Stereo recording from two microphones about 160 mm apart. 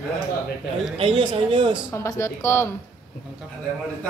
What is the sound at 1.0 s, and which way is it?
Speech, 35° right (ahead or behind).